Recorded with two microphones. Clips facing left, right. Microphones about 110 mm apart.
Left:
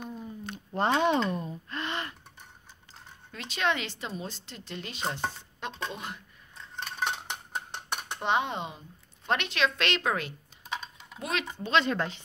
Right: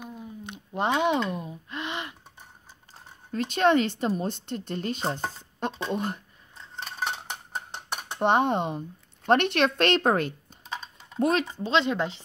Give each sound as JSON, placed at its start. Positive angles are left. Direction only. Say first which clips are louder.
{"t": 0.0, "sound": "a sound", "louder": "left 1 dB", "side_deg": -10}
{"t": 3.3, "sound": "speech", "louder": "right 8 dB", "side_deg": -45}
{"t": 6.5, "sound": "dishes", "louder": "even", "side_deg": -5}
{"t": 8.2, "sound": "speech", "louder": "right 7 dB", "side_deg": -50}
{"t": 11.7, "sound": "speech", "louder": "right 2 dB", "side_deg": -20}